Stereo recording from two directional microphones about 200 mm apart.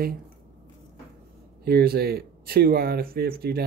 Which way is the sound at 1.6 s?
50° right (ahead or behind).